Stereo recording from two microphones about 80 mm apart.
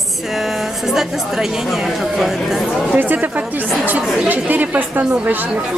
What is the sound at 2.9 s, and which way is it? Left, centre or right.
A woman's voice, right.